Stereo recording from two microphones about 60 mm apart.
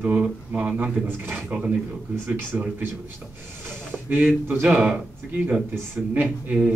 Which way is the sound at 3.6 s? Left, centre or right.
Right.